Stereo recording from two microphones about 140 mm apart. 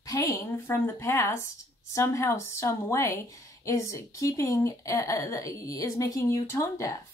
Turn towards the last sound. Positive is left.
turn(degrees=20)  # may be behind; listen again after turning